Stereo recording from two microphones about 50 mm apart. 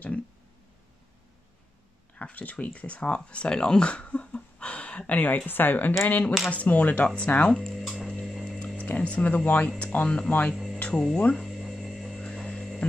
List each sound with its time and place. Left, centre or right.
2.1 s speech: left
3.3 s a sound: left
5.5 s speech: left
7.5 s music: centre
8.1 s a sound: centre
8.5 s music: left
8.8 s speech: left
11.3 s a sound: centre
12.2 s hum: centre